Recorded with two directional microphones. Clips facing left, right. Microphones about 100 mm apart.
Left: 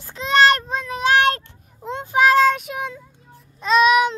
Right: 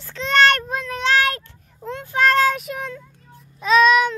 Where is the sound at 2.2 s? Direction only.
5° left (ahead or behind).